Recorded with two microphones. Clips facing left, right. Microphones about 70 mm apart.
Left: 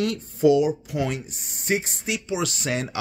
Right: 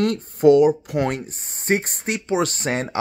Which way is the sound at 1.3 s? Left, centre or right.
Right.